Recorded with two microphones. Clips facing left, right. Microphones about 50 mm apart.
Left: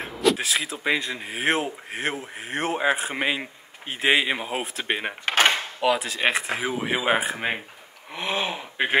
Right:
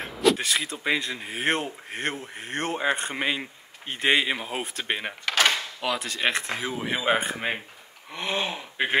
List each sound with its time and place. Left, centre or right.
0.0 s speech: centre
5.2 s drawer open or close: left
5.8 s speech: centre